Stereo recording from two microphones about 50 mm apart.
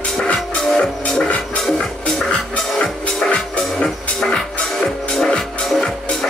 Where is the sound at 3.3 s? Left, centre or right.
Left; by 5.8 s centre.